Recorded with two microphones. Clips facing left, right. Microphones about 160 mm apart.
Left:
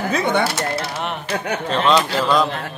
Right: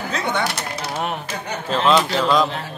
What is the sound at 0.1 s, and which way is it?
Speech, 55° left (ahead or behind).